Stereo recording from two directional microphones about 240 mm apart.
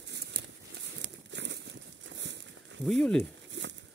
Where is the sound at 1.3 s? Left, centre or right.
Right.